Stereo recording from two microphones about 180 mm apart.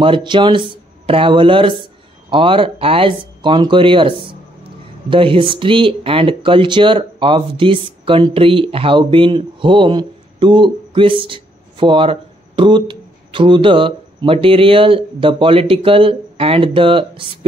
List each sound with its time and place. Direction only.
0.0 s speech: 25° right (ahead or behind)